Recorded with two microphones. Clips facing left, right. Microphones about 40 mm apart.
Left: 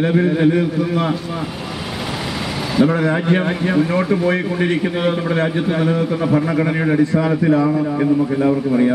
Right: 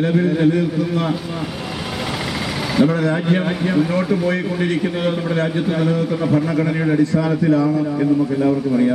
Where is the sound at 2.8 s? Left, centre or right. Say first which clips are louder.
Left 1 dB; left.